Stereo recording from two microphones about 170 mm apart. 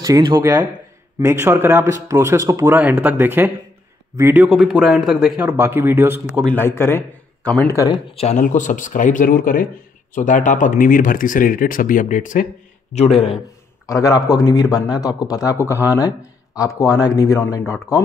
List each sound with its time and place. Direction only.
0.0 s speech: 25° right (ahead or behind)
4.4 s speech: centre (ahead or behind)
6.4 s a man's voice: 10° left (ahead or behind)
8.2 s speech: 45° left (ahead or behind)
13.8 s speech: 20° left (ahead or behind)